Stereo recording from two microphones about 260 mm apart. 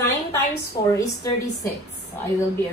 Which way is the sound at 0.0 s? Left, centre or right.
Centre.